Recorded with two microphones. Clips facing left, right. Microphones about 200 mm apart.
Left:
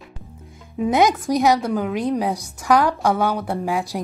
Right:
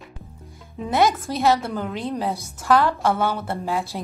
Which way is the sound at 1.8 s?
5° left (ahead or behind).